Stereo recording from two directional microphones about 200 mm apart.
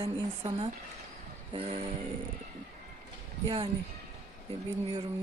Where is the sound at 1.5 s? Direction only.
30° right (ahead or behind).